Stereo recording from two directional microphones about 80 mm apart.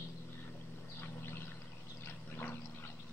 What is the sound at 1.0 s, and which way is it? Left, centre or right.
Bird, left.